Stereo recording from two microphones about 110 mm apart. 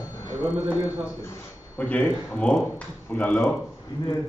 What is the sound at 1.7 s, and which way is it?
A man's voice, 15° left (ahead or behind).